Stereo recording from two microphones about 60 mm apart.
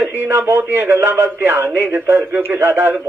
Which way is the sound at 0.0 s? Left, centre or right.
Right.